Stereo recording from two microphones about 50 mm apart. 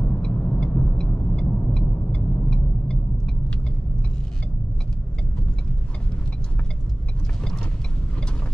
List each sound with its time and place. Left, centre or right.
0.0 s vehicle: left